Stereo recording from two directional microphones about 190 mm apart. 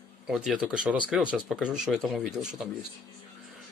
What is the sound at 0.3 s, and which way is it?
Speech, 5° right (ahead or behind).